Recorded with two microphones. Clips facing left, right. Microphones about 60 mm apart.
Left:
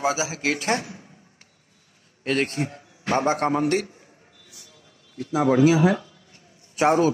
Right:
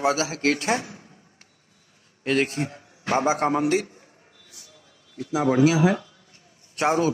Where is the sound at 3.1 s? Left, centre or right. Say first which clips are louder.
Even; left.